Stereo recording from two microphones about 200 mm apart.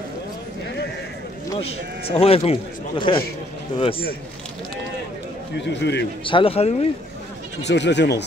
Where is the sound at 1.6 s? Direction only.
30° left (ahead or behind).